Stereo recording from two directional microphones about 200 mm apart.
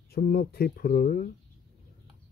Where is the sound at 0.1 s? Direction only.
50° left (ahead or behind).